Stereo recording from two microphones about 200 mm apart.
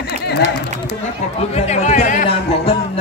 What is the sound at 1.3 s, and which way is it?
Speech, 35° left (ahead or behind).